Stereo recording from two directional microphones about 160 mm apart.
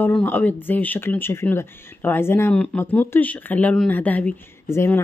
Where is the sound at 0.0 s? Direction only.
10° left (ahead or behind).